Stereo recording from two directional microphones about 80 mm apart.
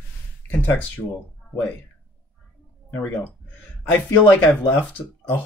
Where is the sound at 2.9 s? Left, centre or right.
Left.